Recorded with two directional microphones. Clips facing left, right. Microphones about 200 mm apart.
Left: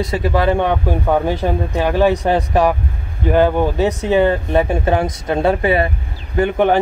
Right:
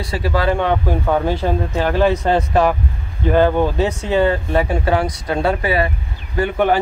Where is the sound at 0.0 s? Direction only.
20° left (ahead or behind).